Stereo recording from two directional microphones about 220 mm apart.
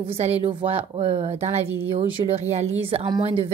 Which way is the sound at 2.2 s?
25° right (ahead or behind).